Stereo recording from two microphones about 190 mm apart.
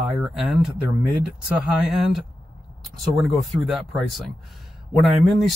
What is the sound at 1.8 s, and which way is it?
Speech, centre (ahead or behind).